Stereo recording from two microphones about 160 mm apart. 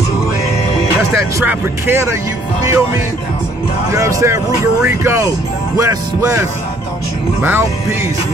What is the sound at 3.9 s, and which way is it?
Speech, 20° right (ahead or behind).